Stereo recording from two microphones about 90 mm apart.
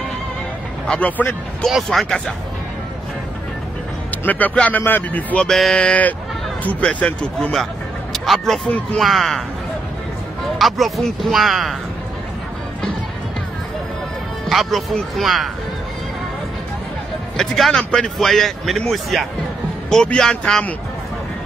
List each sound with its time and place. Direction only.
0.8 s speech: 15° left (ahead or behind)
1.7 s speech: centre (ahead or behind)
4.2 s speech: 20° left (ahead or behind)
8.1 s speech: centre (ahead or behind)
10.4 s speech: centre (ahead or behind)
14.5 s speech: centre (ahead or behind)
17.4 s speech: 5° left (ahead or behind)